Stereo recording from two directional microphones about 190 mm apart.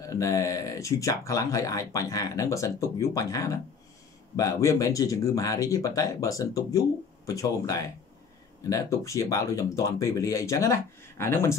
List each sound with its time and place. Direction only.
0.0 s speech: 15° left (ahead or behind)